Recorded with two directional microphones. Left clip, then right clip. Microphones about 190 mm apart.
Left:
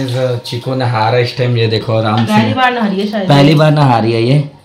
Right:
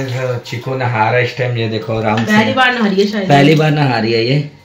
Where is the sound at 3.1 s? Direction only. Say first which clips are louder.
Left 2 dB; 30° left (ahead or behind).